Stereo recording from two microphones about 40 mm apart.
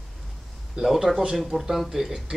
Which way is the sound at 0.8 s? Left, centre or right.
Centre.